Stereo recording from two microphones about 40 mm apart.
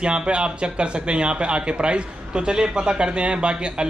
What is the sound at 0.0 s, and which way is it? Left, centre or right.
Speech, right.